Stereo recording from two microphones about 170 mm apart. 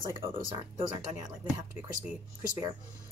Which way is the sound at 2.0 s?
10° right (ahead or behind).